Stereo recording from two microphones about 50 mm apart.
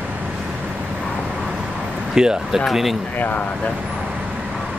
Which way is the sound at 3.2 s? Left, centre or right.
Left.